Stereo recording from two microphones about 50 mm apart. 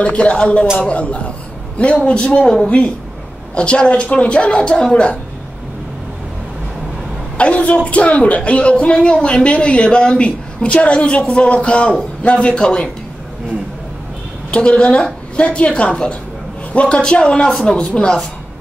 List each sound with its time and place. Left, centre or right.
0.0 s a woman's voice: left
2.4 s speech: centre
3.5 s a woman's voice: left
7.3 s a woman's voice: left
14.5 s a woman's voice: left